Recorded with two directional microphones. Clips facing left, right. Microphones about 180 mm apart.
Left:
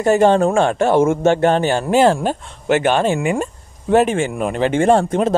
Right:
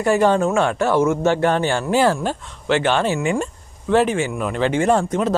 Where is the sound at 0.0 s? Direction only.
25° left (ahead or behind).